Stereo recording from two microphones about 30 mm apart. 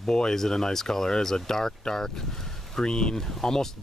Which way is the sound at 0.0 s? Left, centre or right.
Left.